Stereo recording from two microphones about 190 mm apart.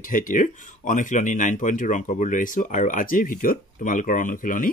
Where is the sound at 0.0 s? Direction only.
45° left (ahead or behind).